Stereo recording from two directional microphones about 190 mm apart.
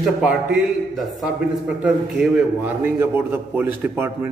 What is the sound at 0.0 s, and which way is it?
A man's voice, 5° right (ahead or behind).